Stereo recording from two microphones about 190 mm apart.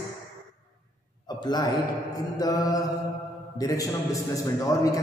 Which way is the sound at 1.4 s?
20° left (ahead or behind).